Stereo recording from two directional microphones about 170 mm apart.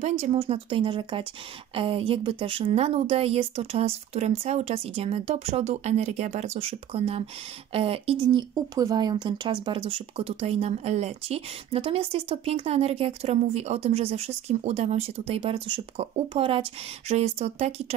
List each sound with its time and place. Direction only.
0.0 s speech: 35° right (ahead or behind)